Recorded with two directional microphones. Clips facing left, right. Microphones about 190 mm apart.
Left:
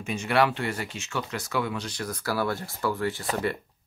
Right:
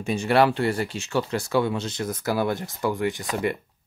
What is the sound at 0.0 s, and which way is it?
Speech, 35° right (ahead or behind).